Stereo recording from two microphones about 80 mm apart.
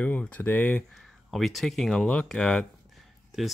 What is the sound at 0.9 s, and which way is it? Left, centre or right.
Speech, centre.